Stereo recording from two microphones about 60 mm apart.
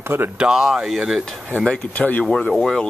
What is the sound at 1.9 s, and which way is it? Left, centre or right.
Speech, left.